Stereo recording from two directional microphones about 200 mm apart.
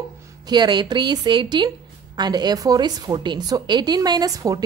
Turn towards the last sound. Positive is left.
turn(degrees=-20)  # may be behind; listen again after turning